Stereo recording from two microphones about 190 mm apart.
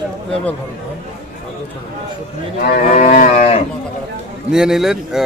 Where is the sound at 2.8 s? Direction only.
40° left (ahead or behind).